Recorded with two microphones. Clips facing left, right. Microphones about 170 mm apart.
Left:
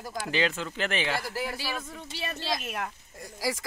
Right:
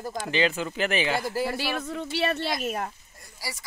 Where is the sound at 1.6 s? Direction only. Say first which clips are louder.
Right 6 dB; 65° right (ahead or behind).